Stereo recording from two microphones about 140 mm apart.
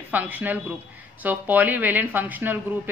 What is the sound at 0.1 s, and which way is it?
Speech, 10° right (ahead or behind).